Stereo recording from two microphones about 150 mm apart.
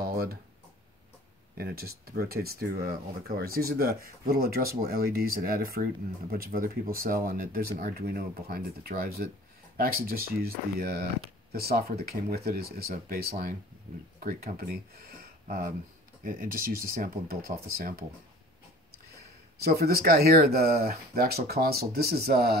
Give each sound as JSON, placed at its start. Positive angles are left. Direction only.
{"t": 0.0, "sound": "a sound", "side_deg": -80}
{"t": 1.6, "sound": "speech", "side_deg": -90}
{"t": 14.2, "sound": "speech", "side_deg": -70}
{"t": 19.6, "sound": "speech", "side_deg": -90}